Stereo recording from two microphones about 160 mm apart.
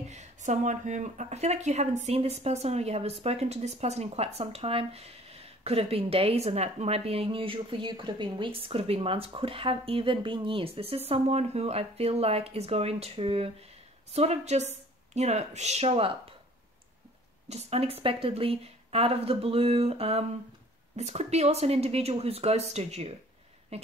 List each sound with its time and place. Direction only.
0.1 s a woman's voice: 45° right (ahead or behind)
17.5 s a woman's voice: 40° right (ahead or behind)